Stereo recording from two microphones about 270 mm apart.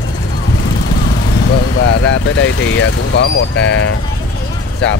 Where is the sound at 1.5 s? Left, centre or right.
Left.